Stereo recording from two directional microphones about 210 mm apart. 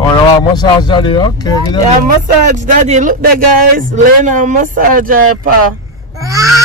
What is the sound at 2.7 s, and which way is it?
A man's voice, 35° right (ahead or behind).